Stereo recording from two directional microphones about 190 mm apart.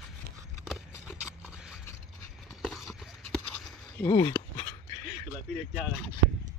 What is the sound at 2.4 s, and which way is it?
Clip-clop, centre (ahead or behind).